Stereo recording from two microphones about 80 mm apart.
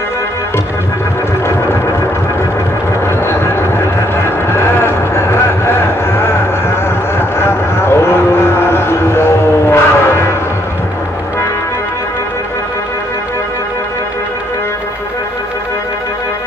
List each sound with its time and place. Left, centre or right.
3.1 s vehicle: left